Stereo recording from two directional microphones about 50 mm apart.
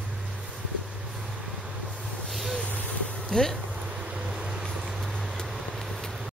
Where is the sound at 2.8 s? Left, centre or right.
Left.